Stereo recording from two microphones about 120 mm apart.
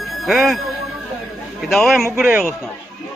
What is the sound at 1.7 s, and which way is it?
Speech, centre (ahead or behind).